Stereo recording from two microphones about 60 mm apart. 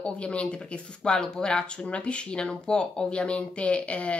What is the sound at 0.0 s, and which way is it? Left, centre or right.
Speech, centre.